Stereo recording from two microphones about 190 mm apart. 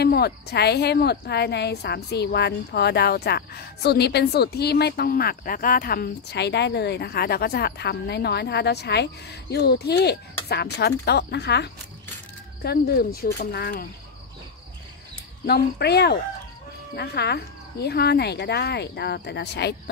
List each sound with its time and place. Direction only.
0.0 s a woman's voice: 55° left (ahead or behind)
15.4 s a woman's voice: 60° left (ahead or behind)